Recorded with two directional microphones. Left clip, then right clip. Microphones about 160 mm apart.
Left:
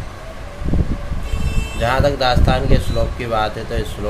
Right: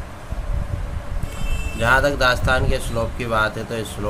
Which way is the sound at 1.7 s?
35° right (ahead or behind).